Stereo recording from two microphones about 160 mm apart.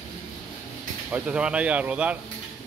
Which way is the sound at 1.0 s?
10° right (ahead or behind).